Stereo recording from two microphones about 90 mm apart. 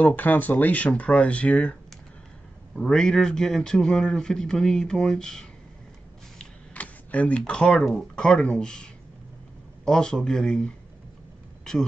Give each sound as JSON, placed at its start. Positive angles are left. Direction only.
{"t": 0.0, "sound": "a man's voice", "side_deg": 20}
{"t": 6.3, "sound": "speech", "side_deg": 15}
{"t": 9.8, "sound": "speech", "side_deg": 5}